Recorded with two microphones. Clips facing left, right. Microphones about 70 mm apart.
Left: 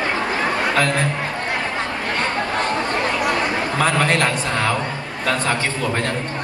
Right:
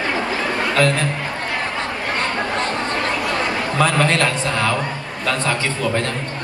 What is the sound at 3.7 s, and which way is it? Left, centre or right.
Speech, left.